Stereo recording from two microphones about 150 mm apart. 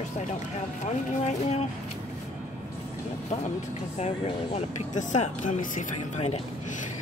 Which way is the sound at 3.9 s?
45° left (ahead or behind).